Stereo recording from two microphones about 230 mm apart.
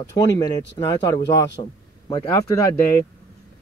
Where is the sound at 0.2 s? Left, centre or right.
Centre.